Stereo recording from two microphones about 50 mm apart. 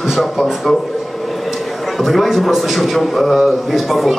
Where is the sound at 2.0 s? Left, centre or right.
Centre.